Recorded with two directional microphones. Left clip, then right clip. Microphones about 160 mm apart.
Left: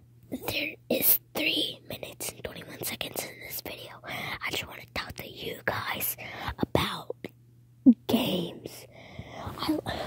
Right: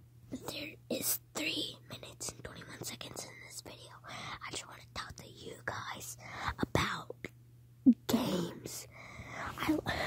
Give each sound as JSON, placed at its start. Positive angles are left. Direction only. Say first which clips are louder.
{"t": 0.3, "sound": "whispering", "louder": "left 11 dB", "side_deg": 35}
{"t": 7.1, "sound": "throat clearing", "louder": "left 7 dB", "side_deg": 20}
{"t": 7.9, "sound": "a sound", "louder": "left 6 dB", "side_deg": 20}
{"t": 9.6, "sound": "whispering", "louder": "left 4 dB", "side_deg": 10}